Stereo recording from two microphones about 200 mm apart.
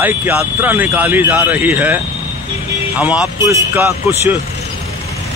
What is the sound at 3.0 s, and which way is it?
Speech, 5° right (ahead or behind).